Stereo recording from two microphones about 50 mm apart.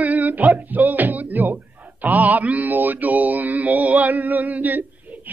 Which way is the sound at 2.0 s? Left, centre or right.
Right.